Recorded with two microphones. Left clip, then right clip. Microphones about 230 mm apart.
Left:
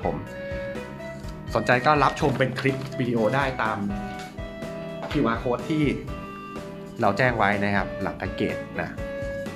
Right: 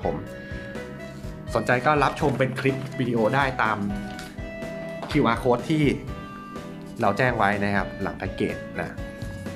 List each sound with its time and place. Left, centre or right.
1.5 s speech: centre
5.0 s speech: right
7.0 s speech: centre